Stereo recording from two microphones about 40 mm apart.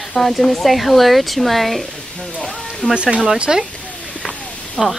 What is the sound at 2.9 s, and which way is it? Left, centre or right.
Speech, right.